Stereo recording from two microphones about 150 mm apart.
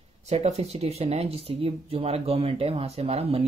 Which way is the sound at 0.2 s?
45° right (ahead or behind).